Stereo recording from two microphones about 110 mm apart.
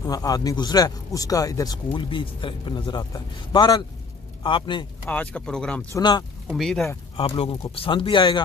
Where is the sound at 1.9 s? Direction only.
50° left (ahead or behind).